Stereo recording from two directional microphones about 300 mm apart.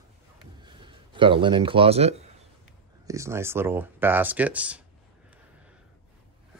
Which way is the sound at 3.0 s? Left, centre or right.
Centre.